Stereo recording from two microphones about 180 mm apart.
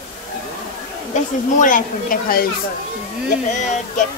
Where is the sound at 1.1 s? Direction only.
45° left (ahead or behind).